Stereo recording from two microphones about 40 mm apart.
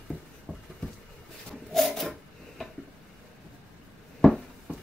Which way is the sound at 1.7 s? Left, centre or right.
Centre.